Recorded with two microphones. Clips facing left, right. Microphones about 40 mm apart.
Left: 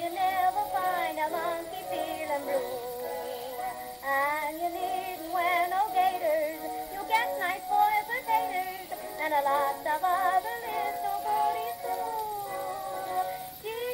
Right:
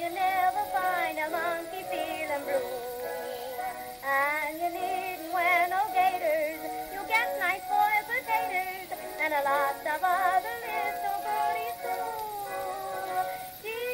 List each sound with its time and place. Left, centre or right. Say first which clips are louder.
0.0 s music: even; centre
1.4 s music: right 1 dB; right
4.1 s music: right 1 dB; centre
7.2 s a sound: right 1 dB; centre
9.3 s music: left 1 dB; centre
11.1 s music: left 3 dB; centre